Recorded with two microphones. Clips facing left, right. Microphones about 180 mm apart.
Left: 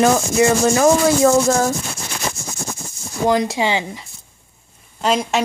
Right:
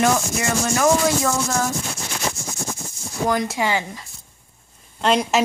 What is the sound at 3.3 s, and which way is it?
Rub, 25° left (ahead or behind).